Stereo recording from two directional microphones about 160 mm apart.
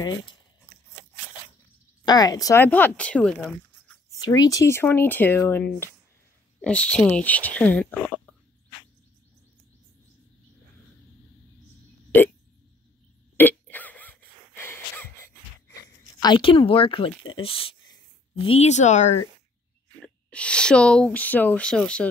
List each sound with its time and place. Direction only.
2.0 s speech: 25° left (ahead or behind); by 4.0 s 5° left (ahead or behind)
4.1 s speech: 20° left (ahead or behind)
12.1 s speech: 10° left (ahead or behind)
13.4 s wheeze: 10° left (ahead or behind)
16.0 s speech: 30° left (ahead or behind); by 19.2 s 45° left (ahead or behind)
20.2 s speech: 5° left (ahead or behind)